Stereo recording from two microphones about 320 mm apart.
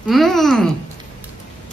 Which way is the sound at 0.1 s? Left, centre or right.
Centre.